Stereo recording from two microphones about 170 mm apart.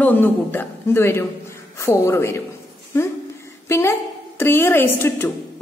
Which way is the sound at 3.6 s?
15° left (ahead or behind).